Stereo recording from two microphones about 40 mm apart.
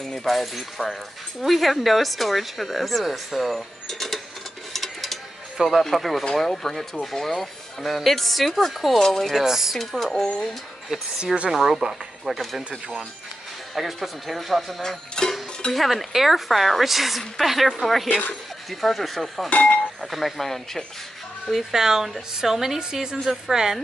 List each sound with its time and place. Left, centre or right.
0.0 s speech: centre
4.7 s a sound: centre
5.9 s speech: centre
9.4 s a woman's voice: centre
9.8 s speech: centre
11.5 s speech: centre
12.3 s a woman's voice: centre
14.0 s speech: centre
14.8 s music: centre
15.7 s speech: centre
19.5 s speech: left
20.0 s speech: centre
21.5 s a woman's voice: centre